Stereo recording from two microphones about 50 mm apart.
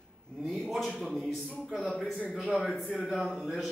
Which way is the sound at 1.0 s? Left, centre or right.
Centre.